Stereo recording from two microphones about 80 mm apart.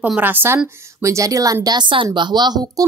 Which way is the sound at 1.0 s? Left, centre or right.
Right.